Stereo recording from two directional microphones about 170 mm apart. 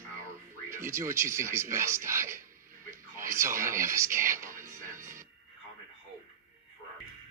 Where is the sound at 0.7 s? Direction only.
15° right (ahead or behind).